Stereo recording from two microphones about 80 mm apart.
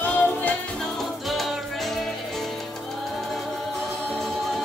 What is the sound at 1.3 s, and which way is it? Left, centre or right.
Music, centre.